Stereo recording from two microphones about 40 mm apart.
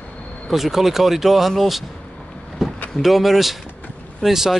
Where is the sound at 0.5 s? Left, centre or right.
Centre.